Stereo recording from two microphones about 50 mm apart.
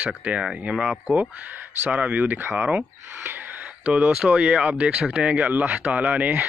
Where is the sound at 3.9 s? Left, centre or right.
Right.